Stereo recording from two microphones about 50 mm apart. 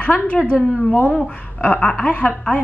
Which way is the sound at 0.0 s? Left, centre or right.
Left.